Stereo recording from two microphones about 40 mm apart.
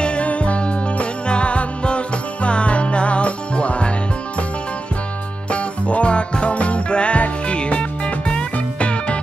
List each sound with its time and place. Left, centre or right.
0.0 s music: left
5.5 s music: left